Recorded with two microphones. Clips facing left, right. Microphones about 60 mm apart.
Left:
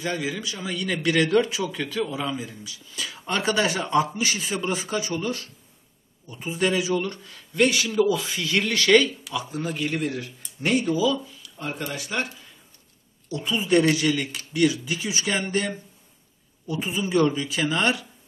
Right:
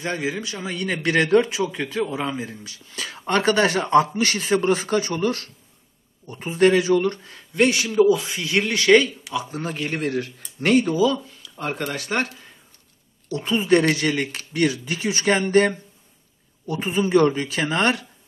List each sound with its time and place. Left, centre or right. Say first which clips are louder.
0.0 s a man's voice: right 2 dB; right
2.4 s speech: right 3 dB; right
6.2 s speech: right 7 dB; right
7.0 s a man's voice: right 6 dB; right
9.5 s speech: even; right
13.4 s speech: right 2 dB; right